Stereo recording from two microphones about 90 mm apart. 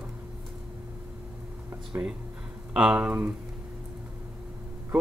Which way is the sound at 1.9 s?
30° right (ahead or behind).